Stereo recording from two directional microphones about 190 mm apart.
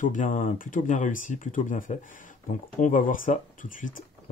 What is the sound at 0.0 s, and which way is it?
Speech, 45° left (ahead or behind).